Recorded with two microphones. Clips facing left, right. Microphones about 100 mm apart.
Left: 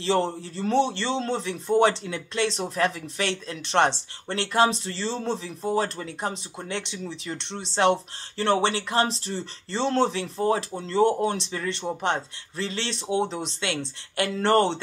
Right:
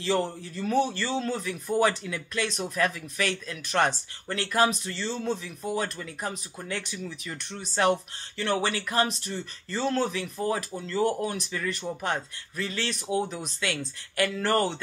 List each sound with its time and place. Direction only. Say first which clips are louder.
0.0 s speech: left 3 dB; 30° left (ahead or behind)